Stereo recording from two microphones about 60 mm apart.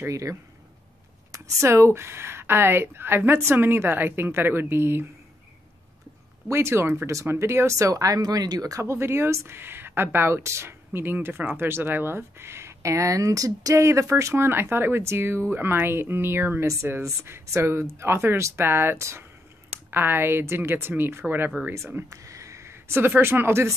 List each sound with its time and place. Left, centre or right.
0.1 s speech: right
1.4 s a woman's voice: right
6.5 s speech: right
8.9 s speech: right
13.7 s a woman's voice: right
21.7 s speech: right